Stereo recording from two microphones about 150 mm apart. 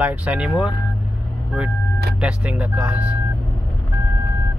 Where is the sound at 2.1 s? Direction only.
10° right (ahead or behind).